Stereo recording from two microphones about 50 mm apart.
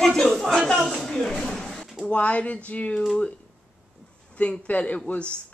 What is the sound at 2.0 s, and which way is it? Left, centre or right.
Speech, left.